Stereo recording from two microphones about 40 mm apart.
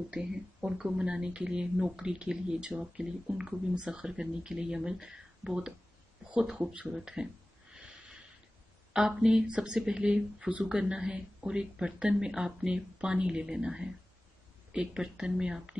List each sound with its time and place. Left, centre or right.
0.1 s speech: right
3.7 s speech: right
6.4 s speech: centre
7.7 s a sound: right
8.9 s speech: centre